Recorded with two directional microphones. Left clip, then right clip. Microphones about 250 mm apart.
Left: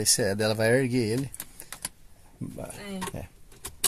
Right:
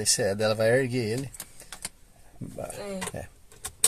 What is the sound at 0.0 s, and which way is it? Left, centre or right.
Speech, centre.